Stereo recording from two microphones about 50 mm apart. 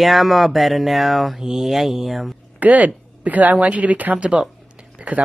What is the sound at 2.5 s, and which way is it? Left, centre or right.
Speech, right.